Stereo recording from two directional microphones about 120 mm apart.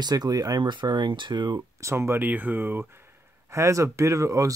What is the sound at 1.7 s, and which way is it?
Speech, 20° right (ahead or behind).